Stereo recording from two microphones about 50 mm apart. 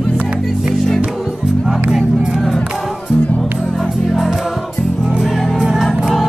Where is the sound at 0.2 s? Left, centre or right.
Right.